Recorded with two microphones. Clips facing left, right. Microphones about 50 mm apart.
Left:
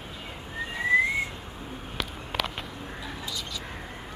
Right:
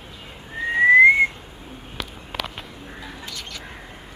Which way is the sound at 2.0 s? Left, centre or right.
Centre.